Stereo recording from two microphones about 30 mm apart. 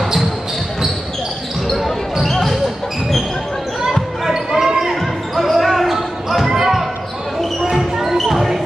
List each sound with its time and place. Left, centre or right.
2.2 s basketball bounce: centre
4.3 s basketball bounce: centre
4.7 s basketball bounce: centre